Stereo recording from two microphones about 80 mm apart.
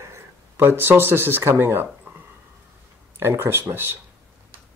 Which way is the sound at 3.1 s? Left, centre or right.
Right.